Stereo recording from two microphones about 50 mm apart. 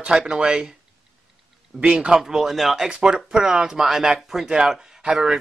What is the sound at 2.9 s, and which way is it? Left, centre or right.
A man's voice, centre.